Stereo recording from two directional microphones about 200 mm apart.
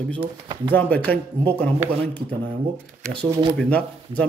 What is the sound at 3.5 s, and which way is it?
Speech, 5° left (ahead or behind).